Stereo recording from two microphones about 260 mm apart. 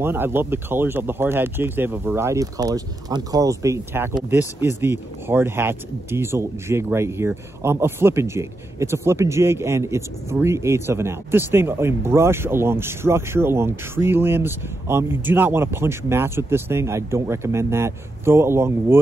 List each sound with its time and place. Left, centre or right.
0.0 s speech: centre